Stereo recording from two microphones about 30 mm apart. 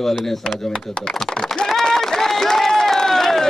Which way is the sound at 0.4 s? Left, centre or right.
Left.